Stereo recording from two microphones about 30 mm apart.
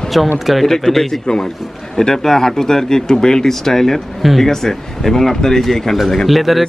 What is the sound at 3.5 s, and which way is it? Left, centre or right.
Speech, centre.